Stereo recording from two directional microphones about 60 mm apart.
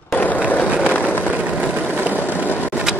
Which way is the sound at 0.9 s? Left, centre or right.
Left.